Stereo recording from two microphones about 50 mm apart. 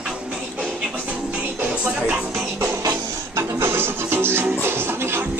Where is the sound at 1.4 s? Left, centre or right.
Right.